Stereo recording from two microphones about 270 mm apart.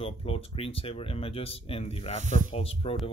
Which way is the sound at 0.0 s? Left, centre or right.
Left.